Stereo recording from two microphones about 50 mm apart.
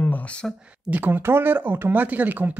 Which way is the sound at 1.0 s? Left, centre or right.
Right.